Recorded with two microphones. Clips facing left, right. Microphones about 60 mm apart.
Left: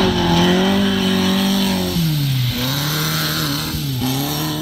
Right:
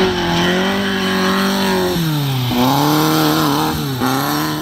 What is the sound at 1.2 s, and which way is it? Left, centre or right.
Vehicle, right.